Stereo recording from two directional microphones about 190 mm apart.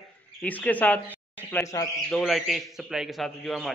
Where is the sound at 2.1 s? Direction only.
Centre (ahead or behind).